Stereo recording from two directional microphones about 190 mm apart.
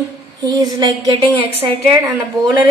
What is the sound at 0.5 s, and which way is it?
Speech, 20° right (ahead or behind).